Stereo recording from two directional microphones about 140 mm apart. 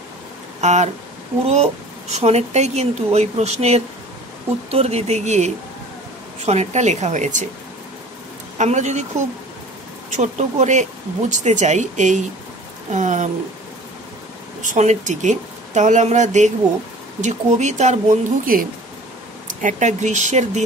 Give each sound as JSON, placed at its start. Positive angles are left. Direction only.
{"t": 0.6, "sound": "speech", "side_deg": -55}
{"t": 8.5, "sound": "speech", "side_deg": -55}
{"t": 10.1, "sound": "speech", "side_deg": -60}
{"t": 14.6, "sound": "speech", "side_deg": -60}
{"t": 18.4, "sound": "speech", "side_deg": -90}
{"t": 19.4, "sound": "speech", "side_deg": -65}